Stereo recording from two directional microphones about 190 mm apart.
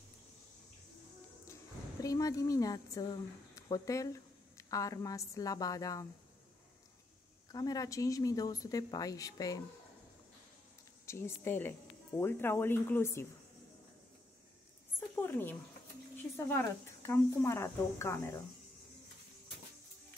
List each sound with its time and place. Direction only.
1.5 s speech: 15° left (ahead or behind)
7.5 s speech: 20° left (ahead or behind)
11.1 s speech: 15° left (ahead or behind)
15.0 s a sound: 10° left (ahead or behind)
16.3 s speech: 15° left (ahead or behind)